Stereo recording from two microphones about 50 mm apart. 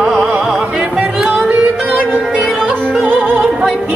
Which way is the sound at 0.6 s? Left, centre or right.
Right.